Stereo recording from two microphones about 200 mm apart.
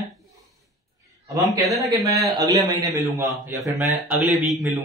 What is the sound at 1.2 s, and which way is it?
A man's voice, 15° right (ahead or behind).